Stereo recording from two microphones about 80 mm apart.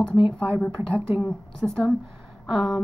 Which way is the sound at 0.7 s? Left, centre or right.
Right.